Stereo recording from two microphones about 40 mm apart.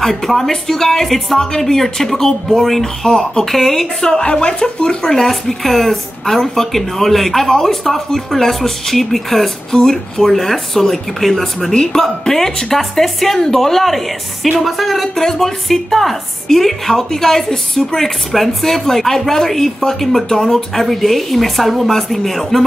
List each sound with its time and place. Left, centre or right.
0.0 s speech: centre
4.0 s speech: left; by 22.6 s centre